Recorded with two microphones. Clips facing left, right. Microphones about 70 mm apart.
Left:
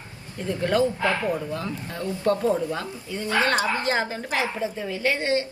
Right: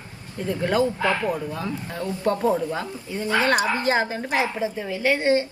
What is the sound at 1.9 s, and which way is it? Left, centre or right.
A woman's voice, right.